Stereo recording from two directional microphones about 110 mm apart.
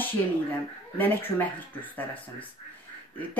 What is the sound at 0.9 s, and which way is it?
Speech, 15° left (ahead or behind).